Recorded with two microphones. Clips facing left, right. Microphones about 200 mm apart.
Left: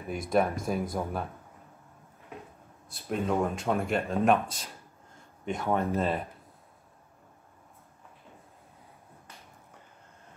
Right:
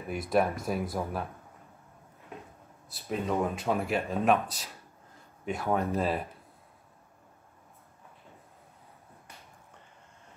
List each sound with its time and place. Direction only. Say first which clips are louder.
0.1 s speech: even; centre (ahead or behind)
2.9 s speech: left 2 dB; centre (ahead or behind)